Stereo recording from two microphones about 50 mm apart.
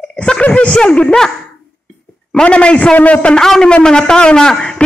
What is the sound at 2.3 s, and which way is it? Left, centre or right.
A man's voice, centre.